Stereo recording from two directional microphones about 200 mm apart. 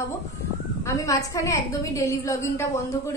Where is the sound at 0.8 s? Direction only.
15° left (ahead or behind).